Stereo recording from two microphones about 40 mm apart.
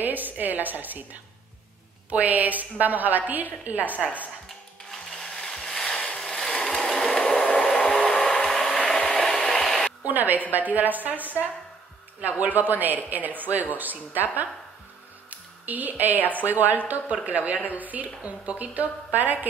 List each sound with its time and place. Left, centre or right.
0.0 s a woman's voice: right
2.0 s a woman's voice: right
5.1 s mechanisms: centre
6.1 s a sound: centre
10.0 s a woman's voice: right
12.2 s a woman's voice: right
15.2 s music: right
16.3 s a woman's voice: right